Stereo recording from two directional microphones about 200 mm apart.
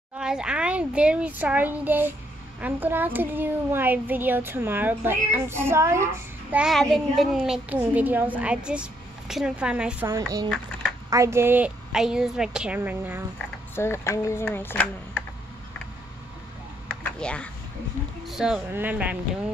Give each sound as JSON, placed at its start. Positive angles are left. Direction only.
{"t": 0.2, "sound": "a woman's voice", "side_deg": -5}
{"t": 6.5, "sound": "a woman's voice", "side_deg": 0}
{"t": 13.7, "sound": "speech", "side_deg": 10}
{"t": 16.8, "sound": "a sound", "side_deg": 5}
{"t": 18.2, "sound": "a child's voice", "side_deg": 0}